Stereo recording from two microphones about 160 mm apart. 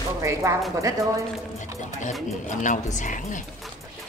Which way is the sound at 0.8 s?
20° right (ahead or behind).